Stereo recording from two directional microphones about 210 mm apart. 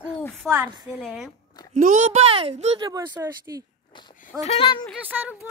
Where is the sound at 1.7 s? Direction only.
35° right (ahead or behind); by 3.6 s 20° right (ahead or behind).